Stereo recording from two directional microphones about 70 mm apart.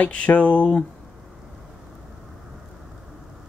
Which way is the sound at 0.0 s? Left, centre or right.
Centre.